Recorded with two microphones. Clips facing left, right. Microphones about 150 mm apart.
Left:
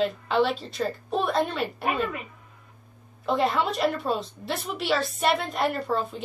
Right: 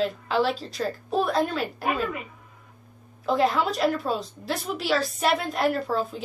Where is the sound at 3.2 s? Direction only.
Centre (ahead or behind).